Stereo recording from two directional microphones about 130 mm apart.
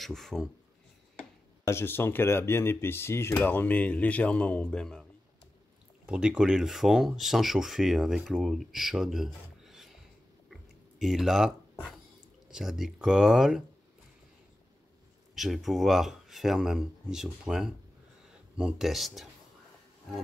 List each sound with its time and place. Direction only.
0.0 s speech: centre (ahead or behind)
1.6 s speech: 20° left (ahead or behind)
6.0 s speech: 10° right (ahead or behind)
10.5 s a sound: centre (ahead or behind)
12.4 s speech: 5° right (ahead or behind)
15.3 s speech: centre (ahead or behind)